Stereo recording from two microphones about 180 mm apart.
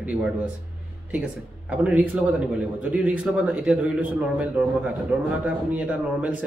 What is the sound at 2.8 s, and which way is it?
Speech, 5° right (ahead or behind).